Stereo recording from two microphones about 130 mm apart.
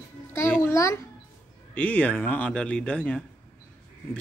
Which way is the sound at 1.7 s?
10° left (ahead or behind).